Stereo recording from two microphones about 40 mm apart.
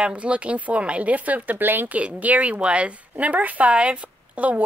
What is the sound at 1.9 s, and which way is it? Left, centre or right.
A woman's voice, right.